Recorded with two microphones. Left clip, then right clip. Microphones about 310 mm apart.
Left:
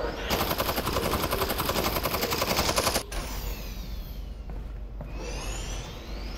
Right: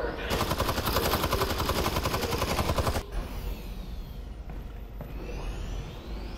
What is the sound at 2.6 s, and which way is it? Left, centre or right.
Machine gun, left.